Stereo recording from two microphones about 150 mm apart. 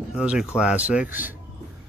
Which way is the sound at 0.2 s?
5° right (ahead or behind).